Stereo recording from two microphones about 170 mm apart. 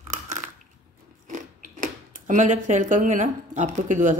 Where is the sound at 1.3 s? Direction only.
50° right (ahead or behind).